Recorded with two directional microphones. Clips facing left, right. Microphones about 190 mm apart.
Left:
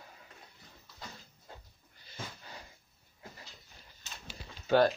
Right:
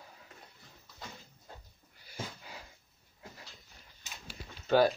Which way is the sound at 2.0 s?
10° right (ahead or behind).